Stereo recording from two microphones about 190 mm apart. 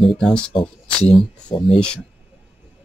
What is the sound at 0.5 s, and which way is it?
Speech, 25° left (ahead or behind).